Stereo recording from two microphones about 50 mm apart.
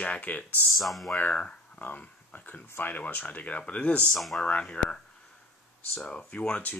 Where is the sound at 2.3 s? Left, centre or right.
Left.